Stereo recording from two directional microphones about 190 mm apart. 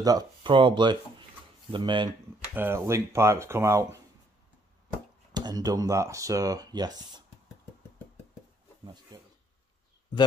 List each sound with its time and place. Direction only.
0.0 s speech: 20° right (ahead or behind)
2.5 s speech: 10° right (ahead or behind)
5.3 s speech: 20° right (ahead or behind)
9.1 s a sound: 20° right (ahead or behind)